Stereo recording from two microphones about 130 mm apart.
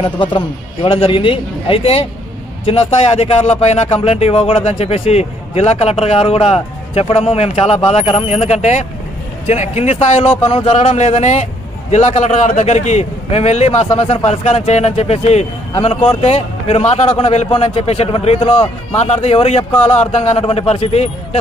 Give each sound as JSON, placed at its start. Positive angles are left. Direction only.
{"t": 0.0, "sound": "a man's voice", "side_deg": 40}
{"t": 17.5, "sound": "speech", "side_deg": 40}
{"t": 19.7, "sound": "speech", "side_deg": 15}
{"t": 20.0, "sound": "speech", "side_deg": 55}